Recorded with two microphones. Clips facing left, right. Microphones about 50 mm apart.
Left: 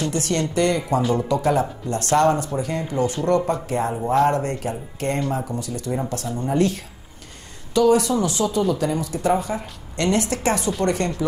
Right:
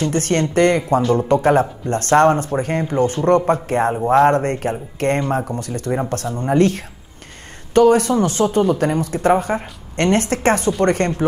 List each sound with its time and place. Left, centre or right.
0.1 s a woman's voice: right